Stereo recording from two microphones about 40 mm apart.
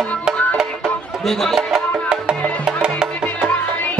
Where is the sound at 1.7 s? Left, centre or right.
Right.